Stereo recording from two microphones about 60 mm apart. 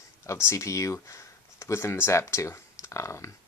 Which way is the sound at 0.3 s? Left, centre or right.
Left.